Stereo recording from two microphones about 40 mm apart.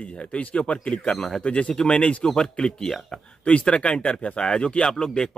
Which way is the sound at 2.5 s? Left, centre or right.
Left.